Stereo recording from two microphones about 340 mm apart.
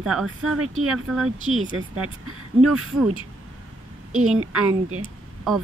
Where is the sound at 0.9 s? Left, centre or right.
Centre.